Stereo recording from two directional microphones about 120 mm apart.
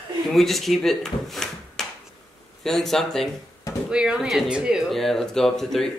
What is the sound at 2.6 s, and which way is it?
Speech, centre (ahead or behind).